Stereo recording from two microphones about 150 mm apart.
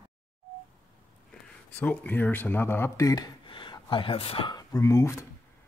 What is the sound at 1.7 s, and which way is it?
Speech, 10° left (ahead or behind).